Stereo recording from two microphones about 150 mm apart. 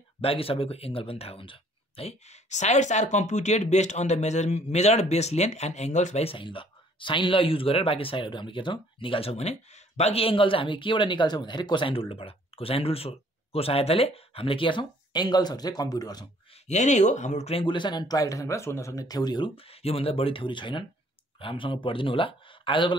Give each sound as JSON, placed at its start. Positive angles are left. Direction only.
{"t": 0.2, "sound": "speech", "side_deg": 40}
{"t": 16.6, "sound": "speech", "side_deg": 50}